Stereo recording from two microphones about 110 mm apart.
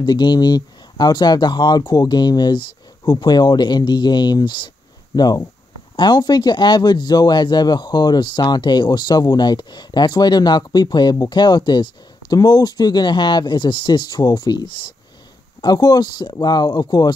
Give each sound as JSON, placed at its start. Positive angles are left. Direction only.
{"t": 0.0, "sound": "speech", "side_deg": 40}